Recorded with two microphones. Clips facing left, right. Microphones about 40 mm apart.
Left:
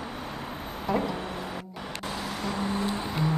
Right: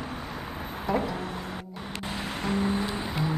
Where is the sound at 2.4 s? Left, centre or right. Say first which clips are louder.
Right 4 dB; right.